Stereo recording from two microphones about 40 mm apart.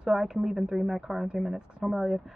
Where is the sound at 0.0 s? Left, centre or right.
Centre.